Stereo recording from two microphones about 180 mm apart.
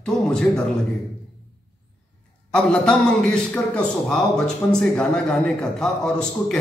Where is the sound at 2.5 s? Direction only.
5° left (ahead or behind).